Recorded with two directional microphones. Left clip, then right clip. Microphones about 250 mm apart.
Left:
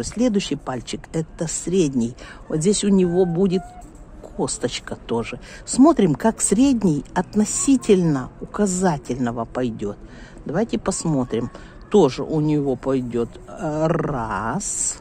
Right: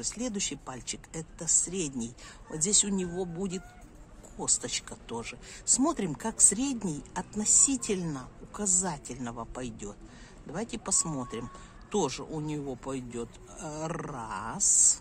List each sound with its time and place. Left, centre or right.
0.0 s speech: left